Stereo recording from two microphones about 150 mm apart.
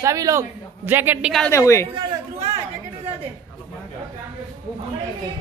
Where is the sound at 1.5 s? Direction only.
20° left (ahead or behind).